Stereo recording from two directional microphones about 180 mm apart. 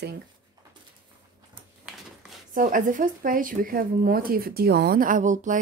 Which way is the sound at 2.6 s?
50° right (ahead or behind).